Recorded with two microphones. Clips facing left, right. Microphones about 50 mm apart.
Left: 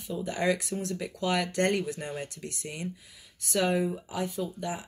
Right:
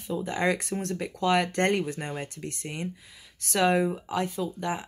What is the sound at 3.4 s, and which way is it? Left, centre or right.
Speech, right.